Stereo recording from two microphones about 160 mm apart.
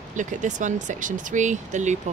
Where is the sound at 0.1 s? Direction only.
50° right (ahead or behind).